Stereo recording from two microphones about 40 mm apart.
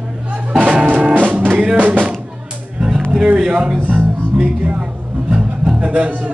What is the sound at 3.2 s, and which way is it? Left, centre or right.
Speech, right.